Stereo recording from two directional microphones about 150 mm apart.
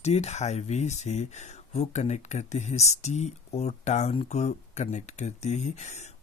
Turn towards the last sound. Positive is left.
turn(degrees=50)  # may be behind; listen again after turning